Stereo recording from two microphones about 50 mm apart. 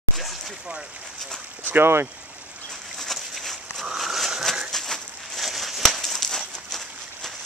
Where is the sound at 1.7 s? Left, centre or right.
Right.